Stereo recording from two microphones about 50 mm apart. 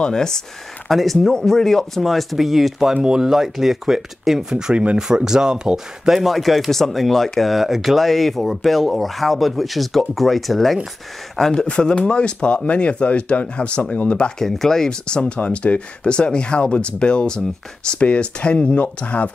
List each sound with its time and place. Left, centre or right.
0.0 s speech: centre
0.8 s speech: centre
6.1 s speech: centre
11.6 s speech: left
14.4 s speech: centre; by 19.3 s left